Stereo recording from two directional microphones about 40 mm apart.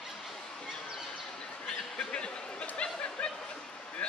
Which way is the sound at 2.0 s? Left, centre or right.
Left.